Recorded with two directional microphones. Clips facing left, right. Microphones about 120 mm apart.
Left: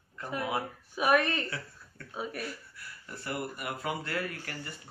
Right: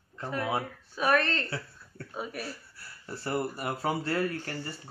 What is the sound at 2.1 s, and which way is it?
Speech, centre (ahead or behind).